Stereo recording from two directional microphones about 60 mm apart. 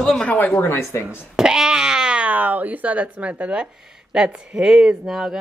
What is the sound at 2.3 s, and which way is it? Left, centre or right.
Speech, right.